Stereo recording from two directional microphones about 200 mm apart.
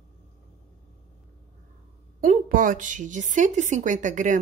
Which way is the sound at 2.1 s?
45° right (ahead or behind).